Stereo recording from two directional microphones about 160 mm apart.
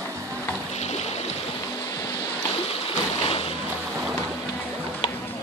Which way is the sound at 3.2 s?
35° left (ahead or behind).